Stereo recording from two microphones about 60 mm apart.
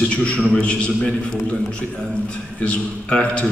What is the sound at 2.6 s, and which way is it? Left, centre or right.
Speech, centre.